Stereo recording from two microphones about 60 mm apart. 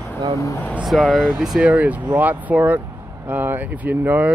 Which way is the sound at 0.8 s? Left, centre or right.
Centre.